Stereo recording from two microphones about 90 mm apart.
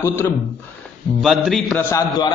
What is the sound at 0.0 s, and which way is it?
Speech, 30° left (ahead or behind).